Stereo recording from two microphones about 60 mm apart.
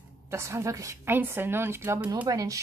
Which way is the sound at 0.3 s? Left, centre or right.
Right.